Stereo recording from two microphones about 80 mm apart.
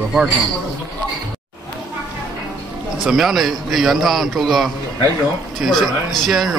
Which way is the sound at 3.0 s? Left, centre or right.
Centre.